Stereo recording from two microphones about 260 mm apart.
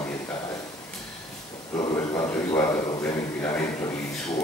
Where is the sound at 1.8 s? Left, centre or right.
Centre.